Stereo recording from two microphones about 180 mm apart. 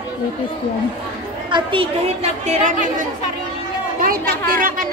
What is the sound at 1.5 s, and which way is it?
Speech, 30° right (ahead or behind).